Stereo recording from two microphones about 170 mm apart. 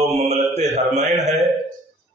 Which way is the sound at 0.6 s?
40° right (ahead or behind).